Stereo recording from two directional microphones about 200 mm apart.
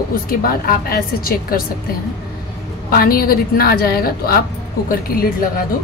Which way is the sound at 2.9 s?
50° left (ahead or behind).